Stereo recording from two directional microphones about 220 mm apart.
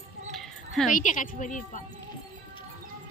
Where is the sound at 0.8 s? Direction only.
35° left (ahead or behind).